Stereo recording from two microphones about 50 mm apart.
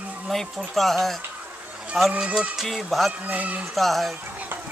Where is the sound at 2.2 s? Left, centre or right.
Centre.